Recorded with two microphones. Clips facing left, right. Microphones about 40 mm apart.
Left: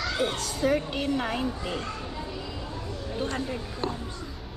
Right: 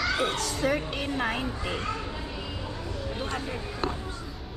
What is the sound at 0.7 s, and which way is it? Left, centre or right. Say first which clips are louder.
Speech: left 2 dB; right.